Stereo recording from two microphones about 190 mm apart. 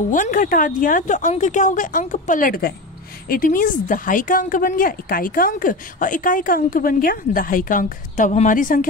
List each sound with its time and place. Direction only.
0.1 s speech: 45° left (ahead or behind)